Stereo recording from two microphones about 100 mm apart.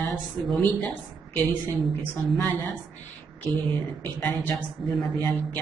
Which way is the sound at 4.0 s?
15° left (ahead or behind).